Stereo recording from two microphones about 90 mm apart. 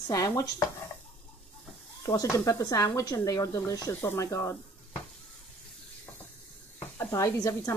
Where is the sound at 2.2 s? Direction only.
35° left (ahead or behind).